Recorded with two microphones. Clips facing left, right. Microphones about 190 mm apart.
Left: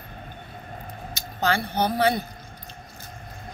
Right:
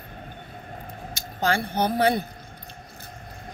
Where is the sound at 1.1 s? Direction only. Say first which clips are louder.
Even; 50° right (ahead or behind).